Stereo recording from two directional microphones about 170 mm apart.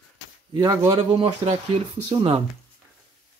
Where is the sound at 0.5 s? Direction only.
20° right (ahead or behind).